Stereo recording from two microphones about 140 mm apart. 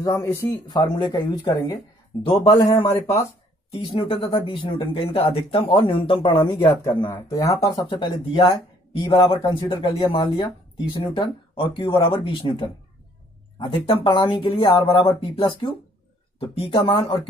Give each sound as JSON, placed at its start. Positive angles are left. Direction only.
{"t": 0.0, "sound": "speech", "side_deg": 20}
{"t": 0.5, "sound": "speech", "side_deg": 30}
{"t": 2.2, "sound": "speech", "side_deg": 40}
{"t": 3.7, "sound": "speech", "side_deg": 45}
{"t": 7.7, "sound": "speech", "side_deg": 35}